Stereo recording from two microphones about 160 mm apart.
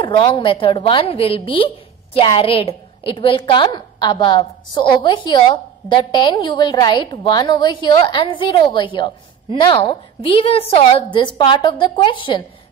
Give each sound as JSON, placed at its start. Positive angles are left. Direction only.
{"t": 0.0, "sound": "a woman's voice", "side_deg": 30}